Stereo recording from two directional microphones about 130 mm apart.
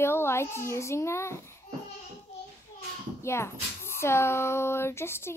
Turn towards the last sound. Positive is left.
turn(degrees=20)  # may be behind; listen again after turning